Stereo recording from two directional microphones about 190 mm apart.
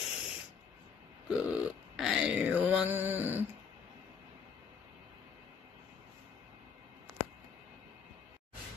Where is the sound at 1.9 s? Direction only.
Centre (ahead or behind).